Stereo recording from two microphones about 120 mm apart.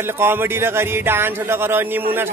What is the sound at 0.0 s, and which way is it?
Speech, 20° right (ahead or behind).